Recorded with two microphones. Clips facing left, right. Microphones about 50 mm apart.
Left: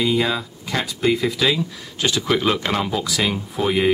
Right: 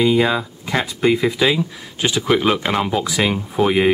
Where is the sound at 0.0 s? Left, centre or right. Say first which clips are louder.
Right 4 dB; centre.